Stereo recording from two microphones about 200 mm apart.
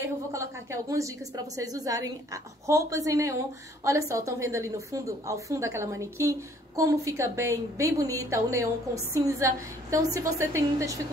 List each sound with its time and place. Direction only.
0.0 s a woman's voice: 15° right (ahead or behind)